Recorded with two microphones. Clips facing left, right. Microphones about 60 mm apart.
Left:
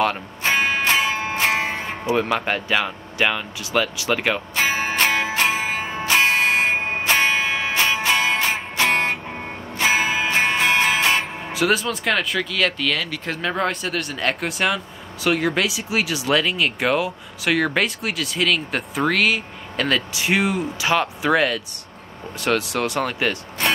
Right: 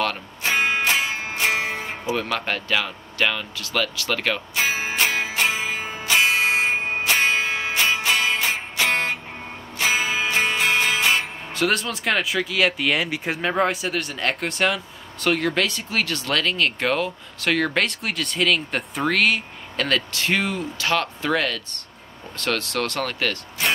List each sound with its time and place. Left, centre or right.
0.4 s music: left
2.1 s speech: centre
4.7 s music: left
11.5 s speech: centre